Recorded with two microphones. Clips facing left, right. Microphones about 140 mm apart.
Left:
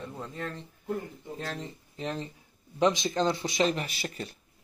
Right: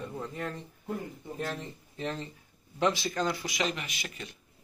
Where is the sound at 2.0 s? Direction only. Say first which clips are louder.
Left 1 dB; 15° left (ahead or behind); by 4.4 s 35° left (ahead or behind).